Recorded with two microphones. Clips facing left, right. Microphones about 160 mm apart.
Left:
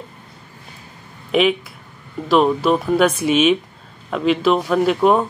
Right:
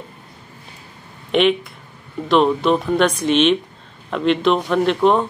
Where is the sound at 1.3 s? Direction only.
5° left (ahead or behind).